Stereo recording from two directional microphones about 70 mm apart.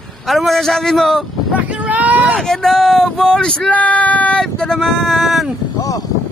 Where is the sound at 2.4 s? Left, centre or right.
Centre.